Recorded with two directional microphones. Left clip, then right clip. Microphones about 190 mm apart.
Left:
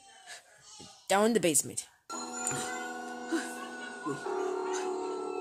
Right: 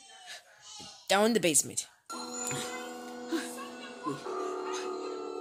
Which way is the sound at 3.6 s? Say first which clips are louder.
Even; 25° left (ahead or behind).